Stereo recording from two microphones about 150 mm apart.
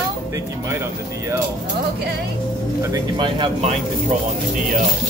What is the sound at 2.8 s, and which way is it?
Speech, 25° right (ahead or behind).